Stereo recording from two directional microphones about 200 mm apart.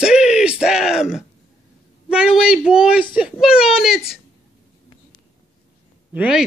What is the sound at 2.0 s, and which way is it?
Speech, 5° right (ahead or behind).